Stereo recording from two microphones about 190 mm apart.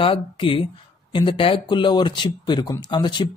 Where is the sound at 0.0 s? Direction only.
25° left (ahead or behind).